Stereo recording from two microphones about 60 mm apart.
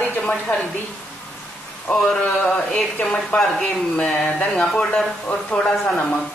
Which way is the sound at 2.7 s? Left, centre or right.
Centre.